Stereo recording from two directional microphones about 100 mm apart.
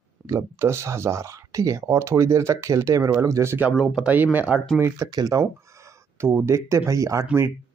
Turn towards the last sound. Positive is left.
turn(degrees=-35)  # may be behind; listen again after turning